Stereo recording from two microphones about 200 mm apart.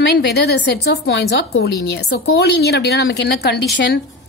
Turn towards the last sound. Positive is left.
turn(degrees=55)  # may be behind; listen again after turning